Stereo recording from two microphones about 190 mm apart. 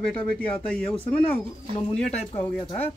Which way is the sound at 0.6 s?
30° left (ahead or behind).